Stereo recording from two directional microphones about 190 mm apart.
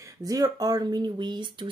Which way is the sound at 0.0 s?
20° right (ahead or behind).